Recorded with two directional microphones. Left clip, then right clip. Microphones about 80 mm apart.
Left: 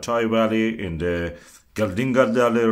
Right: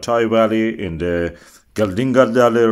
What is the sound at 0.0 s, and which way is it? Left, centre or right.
A man's voice, right.